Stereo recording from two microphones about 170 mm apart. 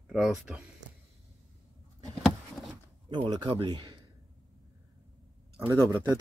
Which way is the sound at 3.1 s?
25° right (ahead or behind).